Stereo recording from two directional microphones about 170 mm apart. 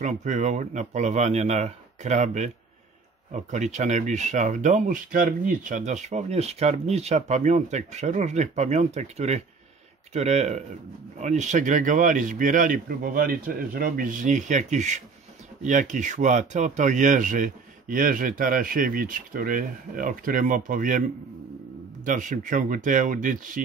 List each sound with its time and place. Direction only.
0.0 s speech: 45° right (ahead or behind)
22.0 s speech: 50° right (ahead or behind)